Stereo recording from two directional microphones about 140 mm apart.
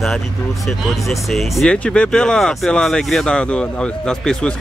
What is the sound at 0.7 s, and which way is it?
Speech, centre (ahead or behind).